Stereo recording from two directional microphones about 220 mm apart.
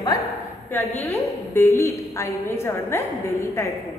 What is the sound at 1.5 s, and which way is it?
A woman's voice, 10° left (ahead or behind).